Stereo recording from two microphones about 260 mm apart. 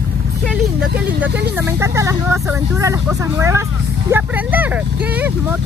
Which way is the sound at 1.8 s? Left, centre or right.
Centre.